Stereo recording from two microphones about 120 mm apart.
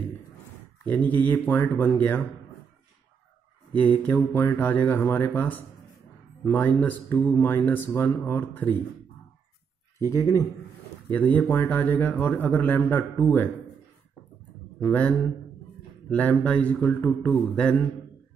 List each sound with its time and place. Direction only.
0.8 s speech: 15° left (ahead or behind)
3.7 s speech: 15° left (ahead or behind)
10.0 s speech: 25° left (ahead or behind)
14.8 s speech: 15° left (ahead or behind)